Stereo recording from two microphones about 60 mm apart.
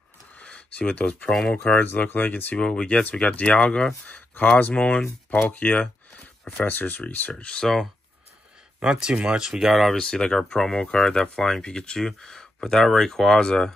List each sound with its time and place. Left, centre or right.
0.4 s a sound: left
1.5 s speech: left
2.5 s speech: centre
8.8 s speech: centre
9.9 s speech: centre